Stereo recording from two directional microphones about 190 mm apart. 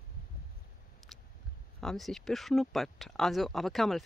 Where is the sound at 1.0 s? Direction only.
Centre (ahead or behind).